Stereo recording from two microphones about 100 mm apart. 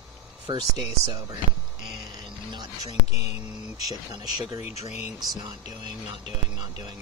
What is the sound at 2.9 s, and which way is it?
Speech, 85° left.